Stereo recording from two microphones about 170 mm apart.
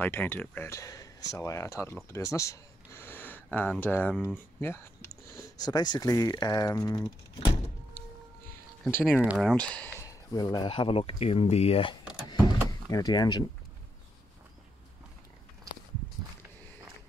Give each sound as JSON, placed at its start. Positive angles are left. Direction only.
{"t": 0.0, "sound": "speech", "side_deg": 10}
{"t": 9.2, "sound": "speech", "side_deg": -5}
{"t": 9.9, "sound": "speech", "side_deg": 20}